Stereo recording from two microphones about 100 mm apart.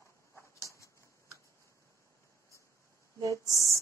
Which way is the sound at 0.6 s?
30° left (ahead or behind).